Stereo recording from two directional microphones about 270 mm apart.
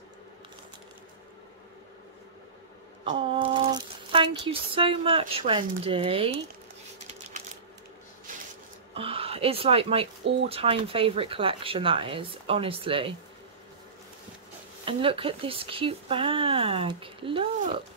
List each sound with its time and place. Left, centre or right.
3.0 s speech: centre
8.9 s speech: right
14.9 s speech: centre